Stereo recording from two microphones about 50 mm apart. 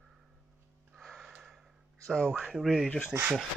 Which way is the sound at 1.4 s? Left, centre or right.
Centre.